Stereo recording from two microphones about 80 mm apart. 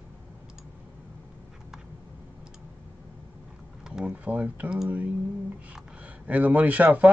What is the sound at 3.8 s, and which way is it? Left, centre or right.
Speech, centre.